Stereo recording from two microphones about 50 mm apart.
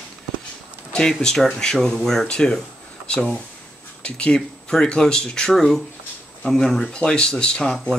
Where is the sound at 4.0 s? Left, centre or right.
Left; by 6.9 s centre.